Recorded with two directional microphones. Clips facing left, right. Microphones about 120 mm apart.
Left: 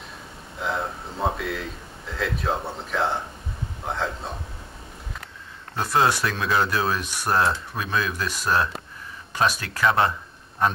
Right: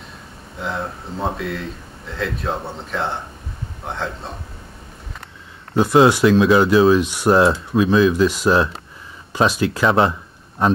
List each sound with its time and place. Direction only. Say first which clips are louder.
0.6 s speech: right 2 dB; centre (ahead or behind)
5.8 s speech: right 9 dB; 20° right (ahead or behind)